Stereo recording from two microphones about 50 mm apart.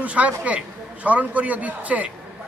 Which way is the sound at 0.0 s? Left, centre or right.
Right.